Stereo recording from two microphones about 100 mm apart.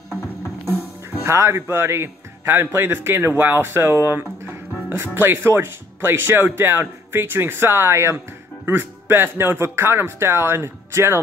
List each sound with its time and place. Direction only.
1.2 s speech: 30° right (ahead or behind)